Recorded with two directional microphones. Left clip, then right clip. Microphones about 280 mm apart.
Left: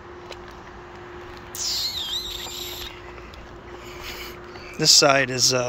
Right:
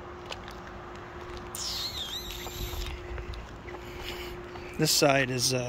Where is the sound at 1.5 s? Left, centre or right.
Centre.